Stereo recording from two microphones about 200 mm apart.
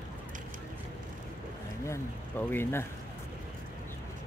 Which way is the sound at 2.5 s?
10° left (ahead or behind).